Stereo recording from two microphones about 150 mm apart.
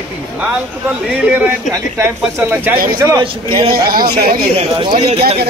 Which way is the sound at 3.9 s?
85° right.